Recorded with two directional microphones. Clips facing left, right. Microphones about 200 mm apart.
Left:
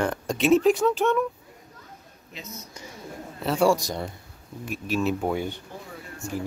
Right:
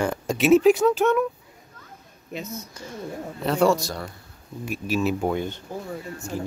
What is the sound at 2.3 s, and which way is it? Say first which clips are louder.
Speech: right 8 dB; 55° right (ahead or behind).